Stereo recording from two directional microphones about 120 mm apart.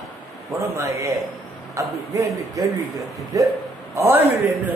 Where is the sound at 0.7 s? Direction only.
25° right (ahead or behind).